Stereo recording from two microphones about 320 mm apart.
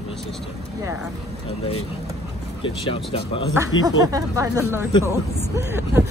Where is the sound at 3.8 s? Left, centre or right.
Centre.